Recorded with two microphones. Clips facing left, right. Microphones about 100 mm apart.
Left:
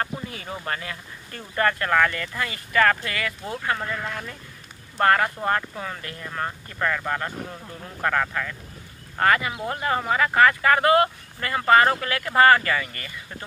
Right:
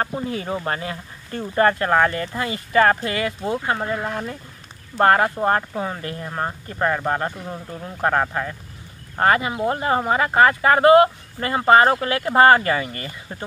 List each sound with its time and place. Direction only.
0.0 s speech: 30° right (ahead or behind)